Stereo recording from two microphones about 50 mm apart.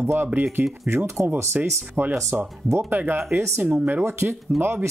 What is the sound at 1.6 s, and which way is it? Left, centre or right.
Speech, right.